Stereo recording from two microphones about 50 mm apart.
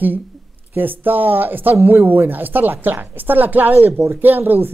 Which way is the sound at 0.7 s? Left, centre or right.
Right.